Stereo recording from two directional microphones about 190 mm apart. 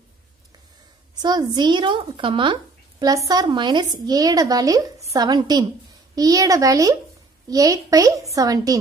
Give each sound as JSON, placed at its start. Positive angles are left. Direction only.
{"t": 1.2, "sound": "a woman's voice", "side_deg": -20}